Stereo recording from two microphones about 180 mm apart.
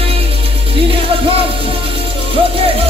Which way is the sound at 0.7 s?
30° right (ahead or behind).